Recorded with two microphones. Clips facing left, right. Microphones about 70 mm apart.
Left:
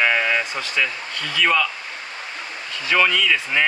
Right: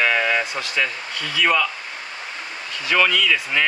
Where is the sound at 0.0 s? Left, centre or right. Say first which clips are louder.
Even; centre.